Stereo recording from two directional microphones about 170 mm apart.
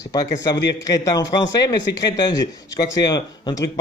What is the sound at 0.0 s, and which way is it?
Speech, 20° left (ahead or behind).